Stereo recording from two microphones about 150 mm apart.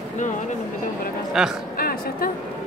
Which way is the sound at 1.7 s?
80° left.